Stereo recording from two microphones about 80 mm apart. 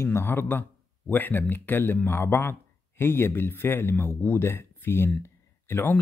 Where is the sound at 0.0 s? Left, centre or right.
Left.